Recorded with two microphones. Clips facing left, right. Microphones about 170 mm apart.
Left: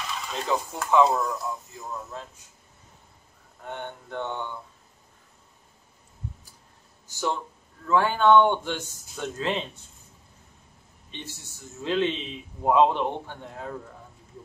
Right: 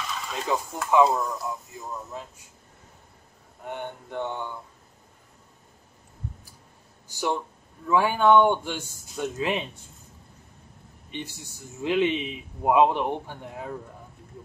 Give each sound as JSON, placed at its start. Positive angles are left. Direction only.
{"t": 0.3, "sound": "a man's voice", "side_deg": -5}
{"t": 2.1, "sound": "a man's voice", "side_deg": -10}
{"t": 3.6, "sound": "a man's voice", "side_deg": -10}
{"t": 7.1, "sound": "a man's voice", "side_deg": -15}
{"t": 11.1, "sound": "a man's voice", "side_deg": -15}